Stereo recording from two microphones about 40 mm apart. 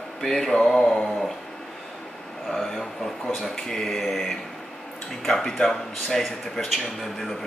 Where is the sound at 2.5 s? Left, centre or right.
Centre.